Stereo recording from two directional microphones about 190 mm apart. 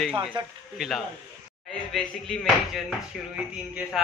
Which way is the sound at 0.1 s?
25° right (ahead or behind).